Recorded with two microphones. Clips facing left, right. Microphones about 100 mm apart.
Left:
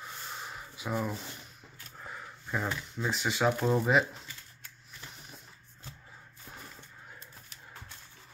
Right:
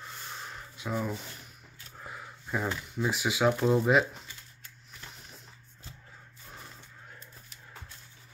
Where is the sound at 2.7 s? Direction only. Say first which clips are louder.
Right 2 dB; 5° right (ahead or behind).